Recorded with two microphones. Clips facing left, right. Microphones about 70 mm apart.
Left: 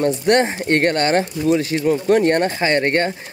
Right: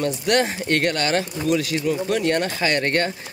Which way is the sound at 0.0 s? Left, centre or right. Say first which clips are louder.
Left 5 dB; left.